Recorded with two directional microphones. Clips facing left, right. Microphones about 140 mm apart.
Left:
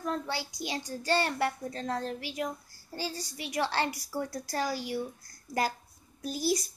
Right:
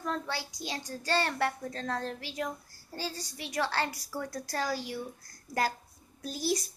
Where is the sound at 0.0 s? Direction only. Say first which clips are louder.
Left 1 dB; 10° left (ahead or behind).